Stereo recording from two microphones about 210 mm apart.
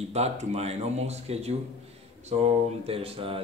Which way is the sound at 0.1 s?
30° right (ahead or behind).